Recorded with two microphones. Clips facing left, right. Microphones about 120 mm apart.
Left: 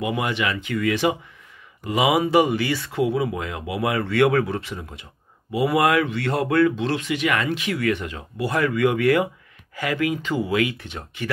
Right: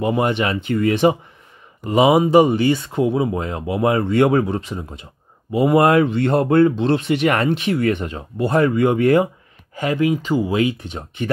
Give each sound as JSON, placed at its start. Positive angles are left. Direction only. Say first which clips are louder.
{"t": 0.0, "sound": "speech", "louder": "right 5 dB", "side_deg": -35}
{"t": 2.5, "sound": "speech", "louder": "right 6 dB", "side_deg": -25}
{"t": 5.5, "sound": "speech", "louder": "right 5 dB", "side_deg": -35}